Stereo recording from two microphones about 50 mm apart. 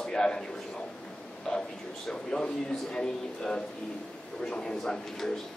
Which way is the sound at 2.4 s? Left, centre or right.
Centre.